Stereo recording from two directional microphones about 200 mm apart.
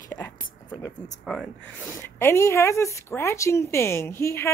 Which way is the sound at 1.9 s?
15° left (ahead or behind).